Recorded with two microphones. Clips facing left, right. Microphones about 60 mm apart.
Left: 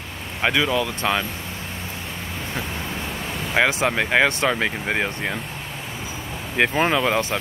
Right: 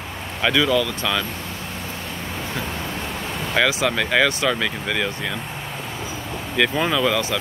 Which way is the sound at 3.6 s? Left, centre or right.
Left.